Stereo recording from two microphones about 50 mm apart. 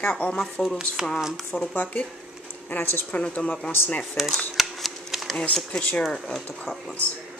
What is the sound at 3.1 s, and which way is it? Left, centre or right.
Speech, left.